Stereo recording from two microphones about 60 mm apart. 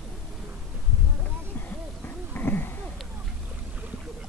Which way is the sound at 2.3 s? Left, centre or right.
Left.